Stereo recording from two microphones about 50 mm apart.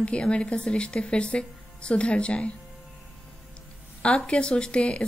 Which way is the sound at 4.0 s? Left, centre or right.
Left.